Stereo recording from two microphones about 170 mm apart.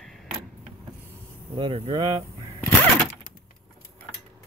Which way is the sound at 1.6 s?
30° right (ahead or behind).